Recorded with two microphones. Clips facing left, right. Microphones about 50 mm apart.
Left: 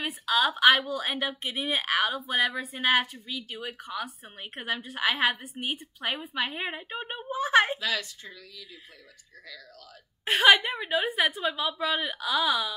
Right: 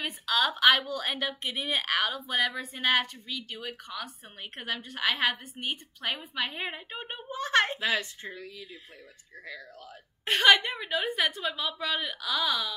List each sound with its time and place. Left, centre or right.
0.0 s a woman's voice: centre
7.8 s speech: right
10.2 s a woman's voice: centre